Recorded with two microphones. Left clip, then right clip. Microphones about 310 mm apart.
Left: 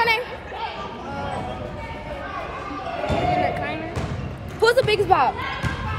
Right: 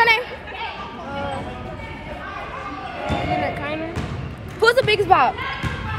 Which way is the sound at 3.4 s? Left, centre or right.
Centre.